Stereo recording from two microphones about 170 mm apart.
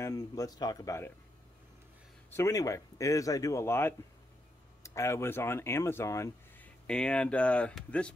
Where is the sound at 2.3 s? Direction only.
15° left (ahead or behind).